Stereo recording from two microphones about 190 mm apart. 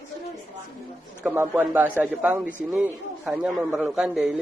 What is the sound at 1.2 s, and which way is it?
A man's voice, 10° right (ahead or behind).